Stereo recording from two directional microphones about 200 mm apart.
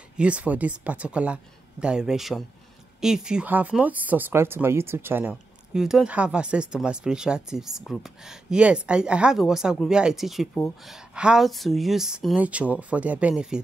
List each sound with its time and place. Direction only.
0.2 s speech: 5° right (ahead or behind)